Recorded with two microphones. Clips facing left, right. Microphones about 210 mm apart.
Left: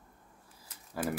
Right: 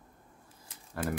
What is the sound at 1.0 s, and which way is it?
Speech, 25° right (ahead or behind).